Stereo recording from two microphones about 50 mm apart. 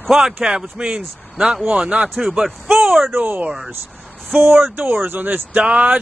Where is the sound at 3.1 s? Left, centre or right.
Right.